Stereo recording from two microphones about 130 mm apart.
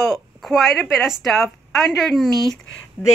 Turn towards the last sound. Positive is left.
turn(degrees=10)  # may be behind; listen again after turning